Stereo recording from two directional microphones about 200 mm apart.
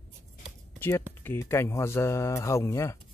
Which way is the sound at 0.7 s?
10° left (ahead or behind).